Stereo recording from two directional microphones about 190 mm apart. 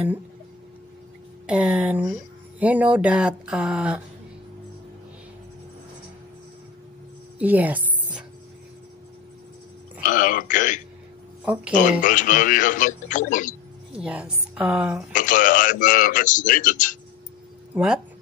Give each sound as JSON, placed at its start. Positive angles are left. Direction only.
{"t": 1.5, "sound": "speech", "side_deg": -5}
{"t": 7.3, "sound": "a sound", "side_deg": -10}
{"t": 10.0, "sound": "a man's voice", "side_deg": 45}
{"t": 11.4, "sound": "speech", "side_deg": -10}
{"t": 11.7, "sound": "a man's voice", "side_deg": 45}
{"t": 13.9, "sound": "speech", "side_deg": -5}
{"t": 15.1, "sound": "a man's voice", "side_deg": 45}
{"t": 17.7, "sound": "speech", "side_deg": -5}